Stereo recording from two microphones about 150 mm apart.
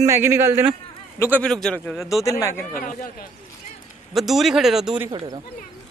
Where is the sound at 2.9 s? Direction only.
60° left (ahead or behind).